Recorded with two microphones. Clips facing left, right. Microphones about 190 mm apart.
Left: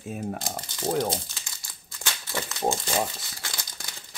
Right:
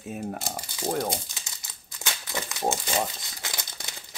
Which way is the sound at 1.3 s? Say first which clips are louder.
Right 1 dB; 20° right (ahead or behind).